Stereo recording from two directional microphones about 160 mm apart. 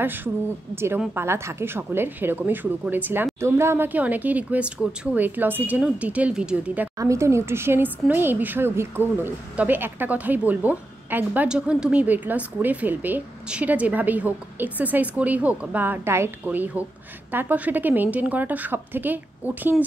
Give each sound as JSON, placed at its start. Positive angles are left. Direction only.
{"t": 0.0, "sound": "a woman's voice", "side_deg": -15}